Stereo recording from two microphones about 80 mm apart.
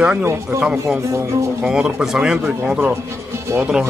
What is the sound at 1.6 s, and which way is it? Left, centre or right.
A man's voice, centre.